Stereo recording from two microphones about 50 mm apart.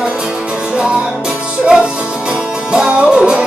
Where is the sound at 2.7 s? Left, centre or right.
Centre.